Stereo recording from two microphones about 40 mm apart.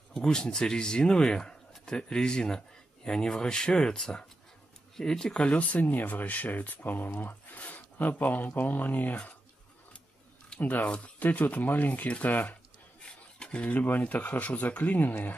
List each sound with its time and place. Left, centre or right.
0.1 s speech: centre
5.5 s speech: left
10.9 s speech: left
11.2 s speech: left
13.4 s a sound: left
13.7 s speech: left